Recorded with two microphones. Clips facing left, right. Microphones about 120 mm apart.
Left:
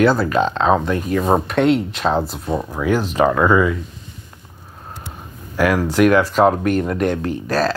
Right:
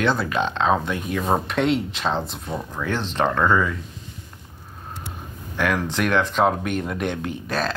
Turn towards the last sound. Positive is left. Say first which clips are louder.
# left 6 dB
turn(degrees=0)  # may be behind; listen again after turning